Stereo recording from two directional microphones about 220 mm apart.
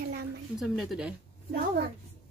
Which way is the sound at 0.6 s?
Centre (ahead or behind).